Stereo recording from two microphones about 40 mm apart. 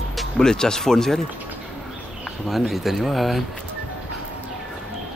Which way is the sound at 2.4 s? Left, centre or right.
Centre.